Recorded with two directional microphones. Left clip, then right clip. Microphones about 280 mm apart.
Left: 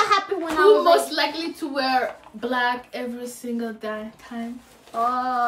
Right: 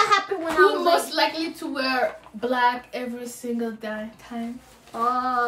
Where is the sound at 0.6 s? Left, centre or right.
Centre.